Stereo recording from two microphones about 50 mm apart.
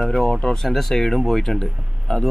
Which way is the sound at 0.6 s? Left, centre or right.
Centre.